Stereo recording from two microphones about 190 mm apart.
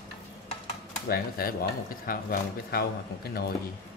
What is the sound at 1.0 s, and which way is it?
Speech, 55° left (ahead or behind).